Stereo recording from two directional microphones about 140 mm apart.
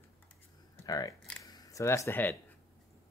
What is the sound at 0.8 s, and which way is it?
Speech, 25° left (ahead or behind).